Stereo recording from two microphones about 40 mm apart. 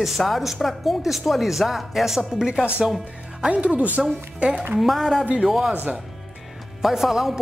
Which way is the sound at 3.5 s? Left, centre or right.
Right.